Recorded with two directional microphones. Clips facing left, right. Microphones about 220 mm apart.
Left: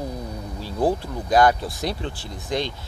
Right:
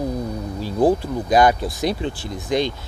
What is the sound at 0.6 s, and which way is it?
Speech, 15° right (ahead or behind).